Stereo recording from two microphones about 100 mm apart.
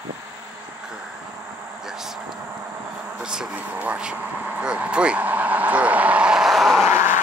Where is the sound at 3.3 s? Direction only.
10° right (ahead or behind).